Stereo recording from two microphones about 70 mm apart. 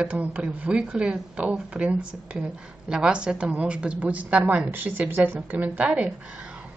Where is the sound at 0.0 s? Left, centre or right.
Right.